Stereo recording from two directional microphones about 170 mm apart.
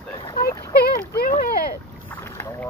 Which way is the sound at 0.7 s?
60° left (ahead or behind).